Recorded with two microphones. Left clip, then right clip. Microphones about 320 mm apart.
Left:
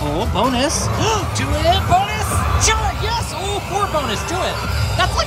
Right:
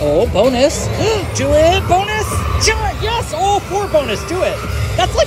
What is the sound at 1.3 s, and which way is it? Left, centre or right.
Speech, centre.